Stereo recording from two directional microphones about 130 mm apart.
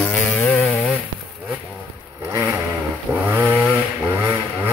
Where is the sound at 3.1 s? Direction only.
15° right (ahead or behind).